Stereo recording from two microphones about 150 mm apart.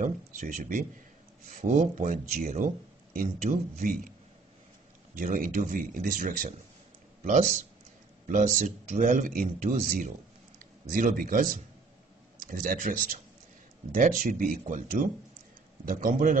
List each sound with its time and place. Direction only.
0.0 s a man's voice: 60° right (ahead or behind)
5.1 s speech: 65° right (ahead or behind)
8.5 s a man's voice: 55° right (ahead or behind)